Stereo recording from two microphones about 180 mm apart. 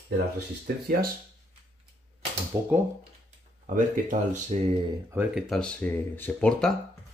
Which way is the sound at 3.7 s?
45° right (ahead or behind).